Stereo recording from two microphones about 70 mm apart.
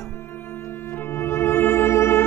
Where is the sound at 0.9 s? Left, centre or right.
Left.